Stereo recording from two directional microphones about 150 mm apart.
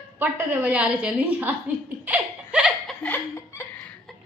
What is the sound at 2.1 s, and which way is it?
Laughter, 10° right (ahead or behind).